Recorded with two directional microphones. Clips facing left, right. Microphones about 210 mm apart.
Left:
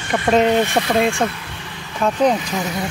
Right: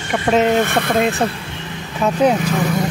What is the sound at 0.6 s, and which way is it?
Speech, 55° right (ahead or behind).